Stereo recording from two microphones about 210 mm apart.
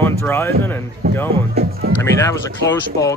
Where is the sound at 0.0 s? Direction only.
10° left (ahead or behind).